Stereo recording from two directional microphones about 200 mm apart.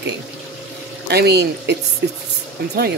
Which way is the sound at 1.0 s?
55° right (ahead or behind).